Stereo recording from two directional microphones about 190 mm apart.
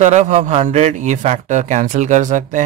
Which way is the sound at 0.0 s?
40° right (ahead or behind).